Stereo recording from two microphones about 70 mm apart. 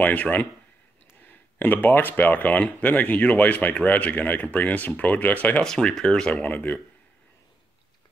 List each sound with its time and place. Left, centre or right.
0.0 s speech: left
5.6 s speech: centre
6.5 s speech: left